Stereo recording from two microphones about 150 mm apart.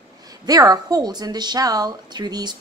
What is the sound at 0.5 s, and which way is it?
A woman's voice, 25° right (ahead or behind).